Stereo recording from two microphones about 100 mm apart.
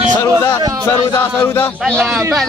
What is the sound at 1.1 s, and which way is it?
Speech, 25° left (ahead or behind).